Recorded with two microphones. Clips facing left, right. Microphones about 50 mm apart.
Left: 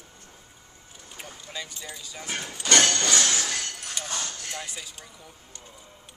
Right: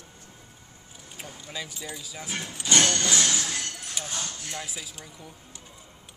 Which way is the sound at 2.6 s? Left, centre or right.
Left.